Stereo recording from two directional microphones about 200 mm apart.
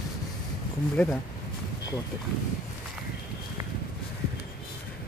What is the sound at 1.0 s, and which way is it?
Speech, 10° left (ahead or behind).